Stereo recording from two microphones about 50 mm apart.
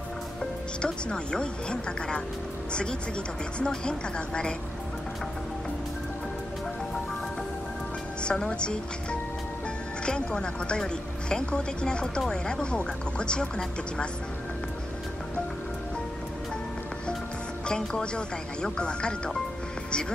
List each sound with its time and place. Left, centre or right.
0.4 s a woman's voice: centre
8.2 s a woman's voice: left
17.6 s a woman's voice: centre